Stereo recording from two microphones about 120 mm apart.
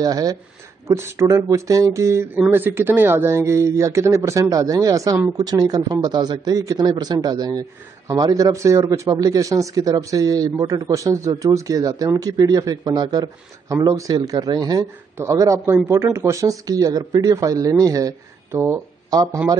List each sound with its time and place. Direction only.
0.0 s a man's voice: 30° right (ahead or behind)
19.0 s speech: 35° right (ahead or behind)